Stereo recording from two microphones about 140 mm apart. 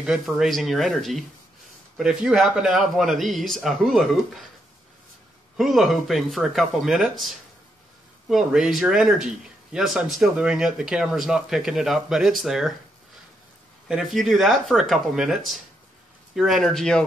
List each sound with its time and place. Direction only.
0.0 s speech: 5° right (ahead or behind)
5.6 s speech: centre (ahead or behind)
13.8 s speech: centre (ahead or behind)